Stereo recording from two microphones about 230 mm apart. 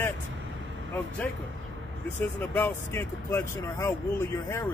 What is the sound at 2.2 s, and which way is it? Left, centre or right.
Speech, centre.